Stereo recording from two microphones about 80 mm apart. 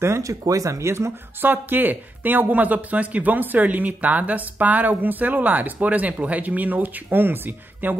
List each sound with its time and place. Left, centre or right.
0.0 s speech: right